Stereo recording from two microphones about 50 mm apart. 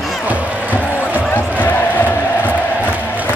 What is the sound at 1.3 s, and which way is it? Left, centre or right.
Basketball bounce, left.